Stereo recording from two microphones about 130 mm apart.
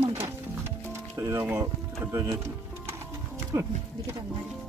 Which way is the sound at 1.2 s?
20° right (ahead or behind).